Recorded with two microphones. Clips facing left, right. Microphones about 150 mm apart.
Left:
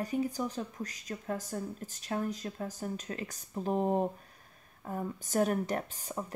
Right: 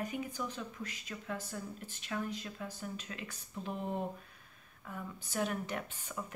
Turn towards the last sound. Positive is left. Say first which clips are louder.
# left 4 dB
turn(degrees=35)  # may be behind; listen again after turning